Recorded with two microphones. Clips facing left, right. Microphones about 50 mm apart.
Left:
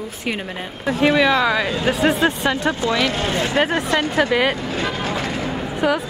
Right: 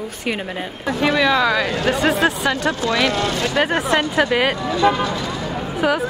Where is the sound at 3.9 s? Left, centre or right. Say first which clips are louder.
Right 2 dB; right.